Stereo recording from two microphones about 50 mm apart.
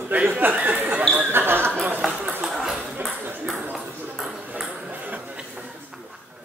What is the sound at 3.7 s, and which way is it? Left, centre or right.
Ping, centre.